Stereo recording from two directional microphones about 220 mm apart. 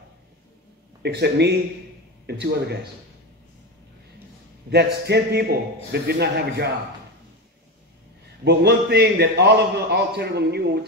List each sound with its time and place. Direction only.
1.0 s a man's voice: 50° right (ahead or behind)
4.6 s a man's voice: 50° right (ahead or behind)
8.5 s a man's voice: 50° right (ahead or behind)